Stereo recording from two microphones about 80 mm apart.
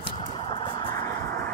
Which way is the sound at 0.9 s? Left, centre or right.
Left.